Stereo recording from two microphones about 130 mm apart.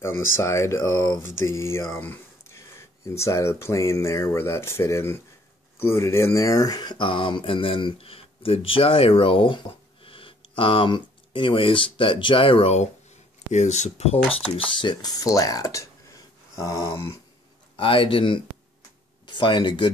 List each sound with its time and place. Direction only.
0.0 s speech: 20° left (ahead or behind)
2.0 s a sound: 20° left (ahead or behind)
3.2 s speech: 20° left (ahead or behind); by 12.7 s 45° left (ahead or behind)
13.5 s speech: 65° left (ahead or behind)
14.6 s speech: 40° left (ahead or behind)
17.7 s speech: 45° left (ahead or behind)